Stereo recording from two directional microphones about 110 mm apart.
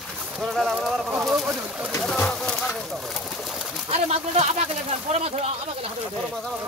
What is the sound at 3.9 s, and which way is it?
Speech, 75° right (ahead or behind).